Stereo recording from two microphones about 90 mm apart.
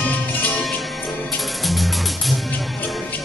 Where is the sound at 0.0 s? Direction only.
20° left (ahead or behind).